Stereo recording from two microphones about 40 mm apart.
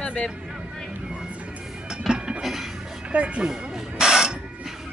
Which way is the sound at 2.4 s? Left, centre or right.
Centre.